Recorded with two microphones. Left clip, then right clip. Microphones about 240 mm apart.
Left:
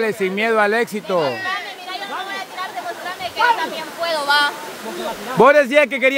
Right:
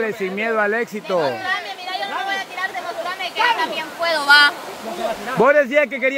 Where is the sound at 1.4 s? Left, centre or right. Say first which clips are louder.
Right 1 dB; right.